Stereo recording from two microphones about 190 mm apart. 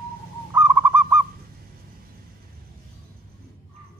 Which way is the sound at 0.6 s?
10° right (ahead or behind).